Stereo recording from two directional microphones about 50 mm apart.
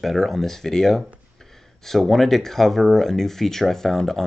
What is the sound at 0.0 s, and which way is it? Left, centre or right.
Speech, centre.